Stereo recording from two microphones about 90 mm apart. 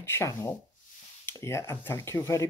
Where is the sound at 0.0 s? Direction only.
30° left (ahead or behind).